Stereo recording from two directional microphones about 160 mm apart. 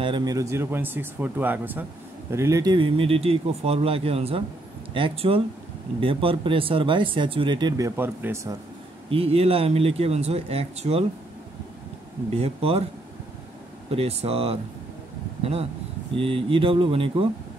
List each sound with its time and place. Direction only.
0.0 s speech: 25° right (ahead or behind)
9.1 s speech: 35° right (ahead or behind)
12.4 s speech: 40° right (ahead or behind)
13.8 s speech: 40° right (ahead or behind)
16.2 s speech: 35° right (ahead or behind)